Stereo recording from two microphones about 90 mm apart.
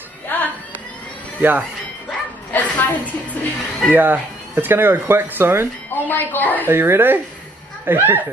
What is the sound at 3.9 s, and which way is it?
A woman's voice, 20° right (ahead or behind).